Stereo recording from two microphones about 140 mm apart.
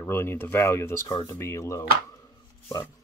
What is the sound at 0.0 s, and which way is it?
Speech, 15° left (ahead or behind).